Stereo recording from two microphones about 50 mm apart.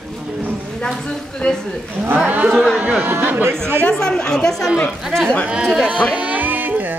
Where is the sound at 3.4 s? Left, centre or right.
Right.